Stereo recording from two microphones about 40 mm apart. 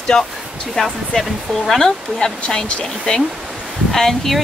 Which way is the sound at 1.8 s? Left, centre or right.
Centre.